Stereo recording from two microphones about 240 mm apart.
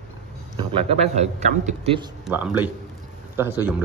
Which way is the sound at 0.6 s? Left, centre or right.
Right.